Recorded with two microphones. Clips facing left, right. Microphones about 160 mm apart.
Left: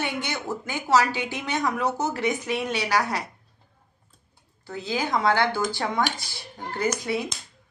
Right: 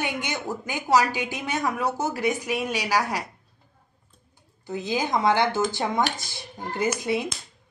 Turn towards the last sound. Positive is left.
turn(degrees=-20)  # may be behind; listen again after turning